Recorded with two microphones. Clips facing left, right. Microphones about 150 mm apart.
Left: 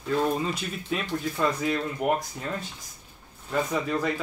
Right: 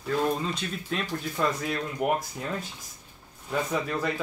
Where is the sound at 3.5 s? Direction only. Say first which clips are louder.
Left 2 dB; centre (ahead or behind).